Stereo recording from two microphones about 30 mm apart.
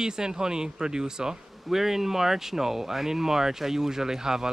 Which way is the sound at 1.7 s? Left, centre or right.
Centre.